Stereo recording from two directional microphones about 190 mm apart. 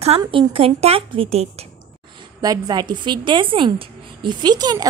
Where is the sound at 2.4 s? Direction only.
20° right (ahead or behind).